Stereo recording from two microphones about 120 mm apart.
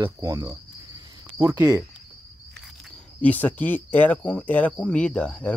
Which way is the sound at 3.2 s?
15° left (ahead or behind).